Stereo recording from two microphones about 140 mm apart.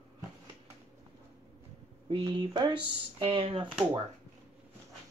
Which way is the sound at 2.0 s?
35° right (ahead or behind).